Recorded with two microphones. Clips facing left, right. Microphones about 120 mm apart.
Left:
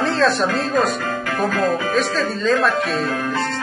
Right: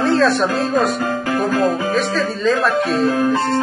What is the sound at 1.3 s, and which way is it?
Music, 25° right (ahead or behind).